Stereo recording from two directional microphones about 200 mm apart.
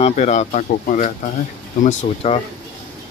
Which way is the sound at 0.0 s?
35° left (ahead or behind).